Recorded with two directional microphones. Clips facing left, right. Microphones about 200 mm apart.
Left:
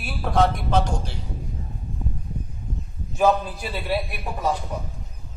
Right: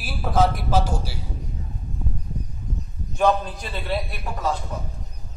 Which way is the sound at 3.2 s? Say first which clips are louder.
Left 1 dB; 5° left (ahead or behind).